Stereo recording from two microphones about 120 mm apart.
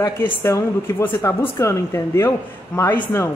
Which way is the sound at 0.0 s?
20° left (ahead or behind).